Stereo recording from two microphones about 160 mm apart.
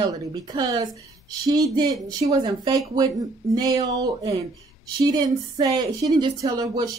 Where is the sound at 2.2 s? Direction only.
40° right (ahead or behind).